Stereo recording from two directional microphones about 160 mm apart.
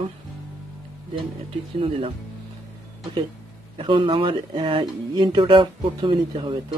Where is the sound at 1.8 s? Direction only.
35° right (ahead or behind).